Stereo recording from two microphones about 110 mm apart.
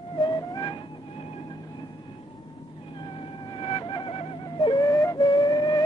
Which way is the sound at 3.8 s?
50° left (ahead or behind).